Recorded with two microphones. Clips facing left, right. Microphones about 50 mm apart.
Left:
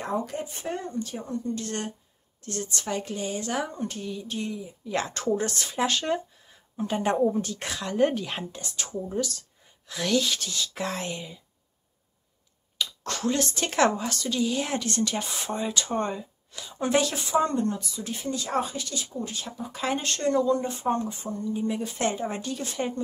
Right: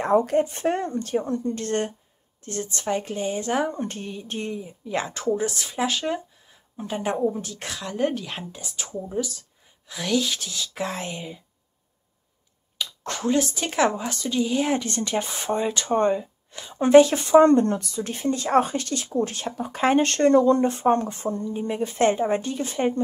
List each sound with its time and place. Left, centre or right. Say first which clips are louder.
0.0 s speech: right 10 dB; right
2.4 s speech: right 4 dB; right
4.8 s speech: right 2 dB; centre
8.5 s speech: even; centre
13.0 s speech: right 4 dB; right
13.4 s speech: left 1 dB; centre
14.0 s speech: right 2 dB; centre
15.0 s speech: right 5 dB; right
17.2 s speech: right 9 dB; right